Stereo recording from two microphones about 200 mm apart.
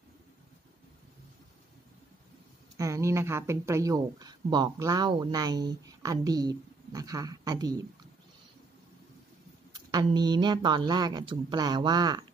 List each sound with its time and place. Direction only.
2.8 s speech: 15° right (ahead or behind)
9.8 s speech: 20° right (ahead or behind)